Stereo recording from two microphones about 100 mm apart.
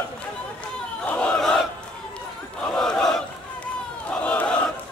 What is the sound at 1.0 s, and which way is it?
Battle cry, 15° left (ahead or behind).